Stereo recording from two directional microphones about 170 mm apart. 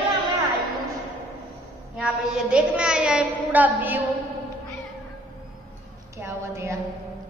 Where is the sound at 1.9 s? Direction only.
5° right (ahead or behind).